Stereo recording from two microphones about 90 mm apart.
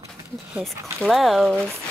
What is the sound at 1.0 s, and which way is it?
Speech, centre (ahead or behind).